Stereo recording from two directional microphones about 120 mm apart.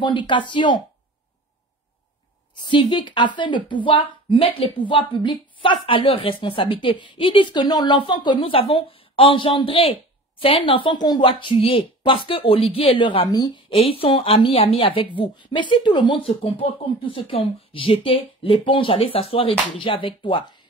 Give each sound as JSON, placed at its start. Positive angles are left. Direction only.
{"t": 0.0, "sound": "speech", "side_deg": 40}
{"t": 2.5, "sound": "speech", "side_deg": 40}